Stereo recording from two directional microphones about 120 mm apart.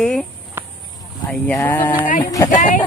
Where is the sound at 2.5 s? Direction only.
90° left.